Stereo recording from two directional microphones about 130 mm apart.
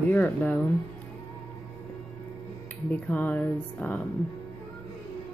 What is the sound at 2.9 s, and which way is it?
Speech, 10° left (ahead or behind).